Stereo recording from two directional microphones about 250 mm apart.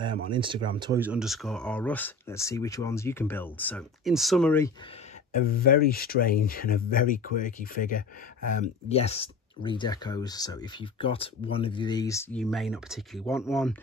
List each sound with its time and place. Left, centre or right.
0.0 s speech: centre
1.0 s speech: centre
5.7 s speech: left; by 13.7 s centre